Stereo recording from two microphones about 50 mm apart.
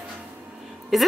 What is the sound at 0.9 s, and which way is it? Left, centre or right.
Speech, centre.